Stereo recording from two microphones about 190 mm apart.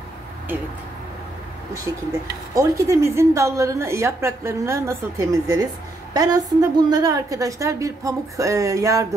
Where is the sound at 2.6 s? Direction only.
15° right (ahead or behind).